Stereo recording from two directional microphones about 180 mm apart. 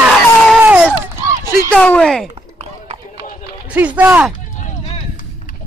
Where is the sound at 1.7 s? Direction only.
5° left (ahead or behind).